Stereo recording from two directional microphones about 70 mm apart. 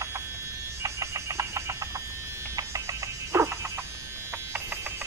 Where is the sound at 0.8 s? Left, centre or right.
Right.